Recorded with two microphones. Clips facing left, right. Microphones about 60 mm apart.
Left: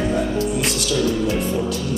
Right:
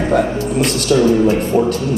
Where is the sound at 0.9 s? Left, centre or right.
Right.